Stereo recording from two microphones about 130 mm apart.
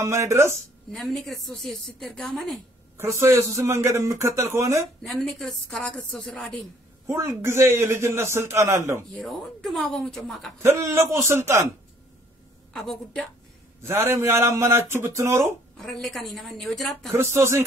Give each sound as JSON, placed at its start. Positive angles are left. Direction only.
{"t": 0.0, "sound": "speech", "side_deg": -20}
{"t": 0.9, "sound": "a woman's voice", "side_deg": 0}
{"t": 3.0, "sound": "speech", "side_deg": -25}
{"t": 5.0, "sound": "a woman's voice", "side_deg": 0}
{"t": 7.2, "sound": "speech", "side_deg": -20}
{"t": 9.1, "sound": "a woman's voice", "side_deg": 0}
{"t": 10.6, "sound": "speech", "side_deg": -25}
{"t": 12.7, "sound": "a woman's voice", "side_deg": 5}
{"t": 13.8, "sound": "speech", "side_deg": -20}
{"t": 15.8, "sound": "a woman's voice", "side_deg": 0}
{"t": 17.2, "sound": "speech", "side_deg": -20}